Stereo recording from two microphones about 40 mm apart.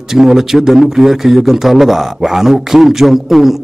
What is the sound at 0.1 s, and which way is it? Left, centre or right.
Speech, centre.